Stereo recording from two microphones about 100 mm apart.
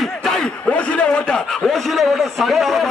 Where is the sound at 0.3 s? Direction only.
10° left (ahead or behind).